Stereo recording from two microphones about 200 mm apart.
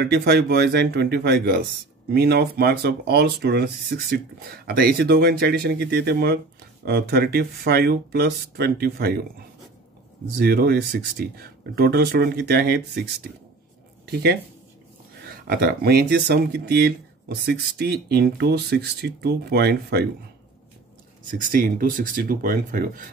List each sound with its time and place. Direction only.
0.0 s speech: 55° right (ahead or behind)
10.4 s speech: 50° right (ahead or behind)
14.0 s speech: 50° right (ahead or behind)
21.3 s speech: 40° right (ahead or behind)